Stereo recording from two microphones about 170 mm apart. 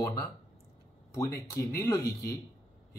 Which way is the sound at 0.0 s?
20° left (ahead or behind).